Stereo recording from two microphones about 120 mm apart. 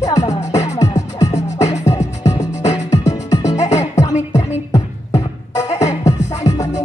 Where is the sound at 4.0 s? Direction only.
35° left (ahead or behind).